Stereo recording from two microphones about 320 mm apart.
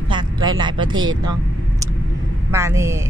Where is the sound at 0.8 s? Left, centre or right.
Right.